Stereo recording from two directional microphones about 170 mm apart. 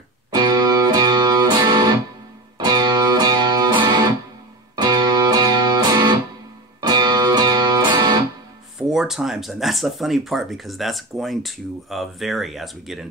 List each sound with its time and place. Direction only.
0.3 s music: 25° right (ahead or behind)
8.7 s speech: 5° right (ahead or behind)